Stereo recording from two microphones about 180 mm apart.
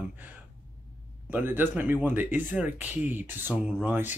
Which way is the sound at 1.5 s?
10° right (ahead or behind).